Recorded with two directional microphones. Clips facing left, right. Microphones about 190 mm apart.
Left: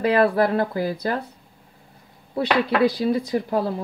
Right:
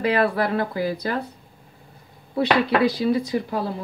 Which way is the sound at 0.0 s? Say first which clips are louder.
Left 3 dB; 45° left (ahead or behind).